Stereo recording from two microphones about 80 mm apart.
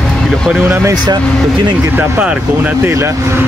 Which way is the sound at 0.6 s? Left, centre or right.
Right.